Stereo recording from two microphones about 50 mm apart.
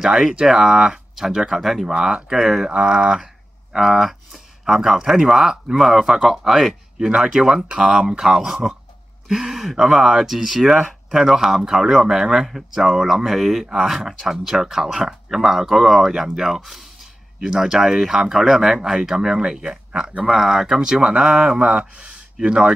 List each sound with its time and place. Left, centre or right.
0.0 s speech: centre
1.9 s speech: centre
2.7 s speech: centre
7.1 s speech: centre